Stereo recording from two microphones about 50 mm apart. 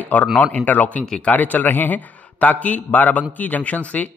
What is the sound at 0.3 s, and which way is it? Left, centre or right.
A man's voice, left.